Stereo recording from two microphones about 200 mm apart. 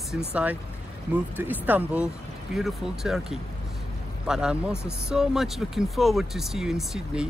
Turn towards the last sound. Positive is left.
turn(degrees=0)  # may be behind; listen again after turning